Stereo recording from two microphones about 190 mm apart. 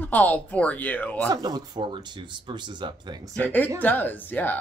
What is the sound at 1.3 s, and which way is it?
Speech, 20° right (ahead or behind).